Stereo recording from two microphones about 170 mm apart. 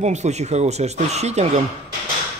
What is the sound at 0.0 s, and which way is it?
Speech, 40° right (ahead or behind).